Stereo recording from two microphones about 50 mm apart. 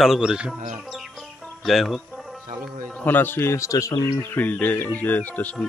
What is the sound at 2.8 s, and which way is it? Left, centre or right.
Speech, left.